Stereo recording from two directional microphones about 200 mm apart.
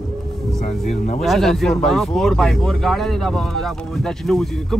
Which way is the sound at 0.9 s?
35° left (ahead or behind).